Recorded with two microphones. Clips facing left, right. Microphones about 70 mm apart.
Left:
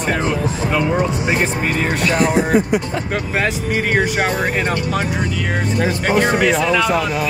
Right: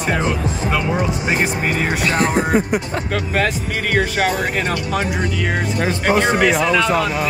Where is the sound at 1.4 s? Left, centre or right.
Centre.